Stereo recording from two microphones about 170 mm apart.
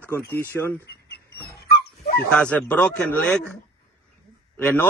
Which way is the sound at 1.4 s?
70° left (ahead or behind).